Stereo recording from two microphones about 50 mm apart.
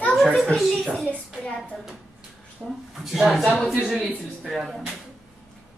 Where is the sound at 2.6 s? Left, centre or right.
Right.